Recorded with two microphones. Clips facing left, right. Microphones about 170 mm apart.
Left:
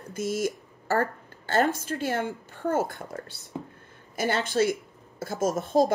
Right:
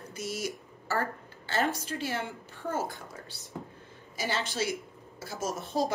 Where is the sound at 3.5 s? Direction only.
20° left (ahead or behind).